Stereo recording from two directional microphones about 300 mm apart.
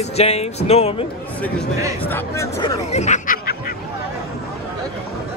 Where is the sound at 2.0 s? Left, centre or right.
Centre.